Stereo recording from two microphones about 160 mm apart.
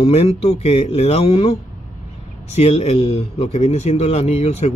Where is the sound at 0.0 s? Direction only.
40° left (ahead or behind).